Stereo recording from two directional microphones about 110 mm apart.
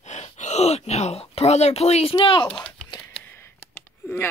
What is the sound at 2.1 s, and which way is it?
Gasp, 50° left (ahead or behind).